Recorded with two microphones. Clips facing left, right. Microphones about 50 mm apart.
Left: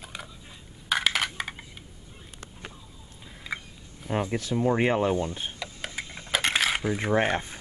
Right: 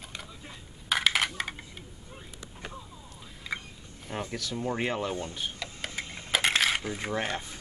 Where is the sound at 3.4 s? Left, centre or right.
Centre.